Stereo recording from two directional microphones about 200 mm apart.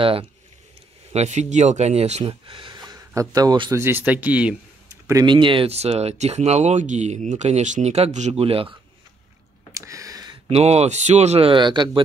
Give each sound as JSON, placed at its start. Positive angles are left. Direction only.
{"t": 0.0, "sound": "speech", "side_deg": -25}
{"t": 3.8, "sound": "speech", "side_deg": -10}
{"t": 5.0, "sound": "speech", "side_deg": -20}
{"t": 9.8, "sound": "a sound", "side_deg": -15}
{"t": 10.5, "sound": "speech", "side_deg": -30}